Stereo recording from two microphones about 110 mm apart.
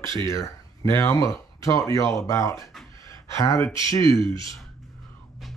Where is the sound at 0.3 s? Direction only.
25° left (ahead or behind).